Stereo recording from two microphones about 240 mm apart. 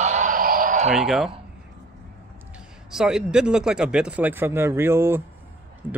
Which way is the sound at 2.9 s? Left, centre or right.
Centre.